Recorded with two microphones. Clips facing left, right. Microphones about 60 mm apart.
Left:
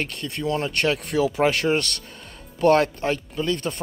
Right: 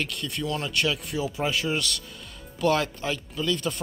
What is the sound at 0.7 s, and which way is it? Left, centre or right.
Speech, left.